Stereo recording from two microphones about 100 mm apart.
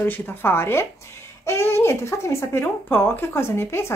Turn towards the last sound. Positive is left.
turn(degrees=25)  # may be behind; listen again after turning